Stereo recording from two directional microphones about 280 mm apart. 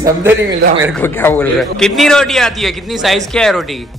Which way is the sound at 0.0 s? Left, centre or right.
Centre.